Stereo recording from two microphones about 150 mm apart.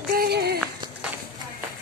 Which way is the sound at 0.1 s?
80° right.